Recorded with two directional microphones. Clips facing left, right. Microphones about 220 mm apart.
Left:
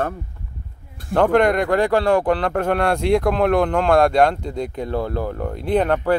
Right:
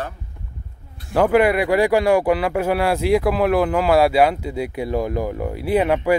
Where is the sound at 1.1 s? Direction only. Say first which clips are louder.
Even; 5° right (ahead or behind).